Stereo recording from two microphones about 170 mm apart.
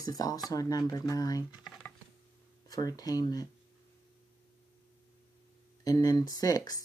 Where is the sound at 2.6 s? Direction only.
20° left (ahead or behind).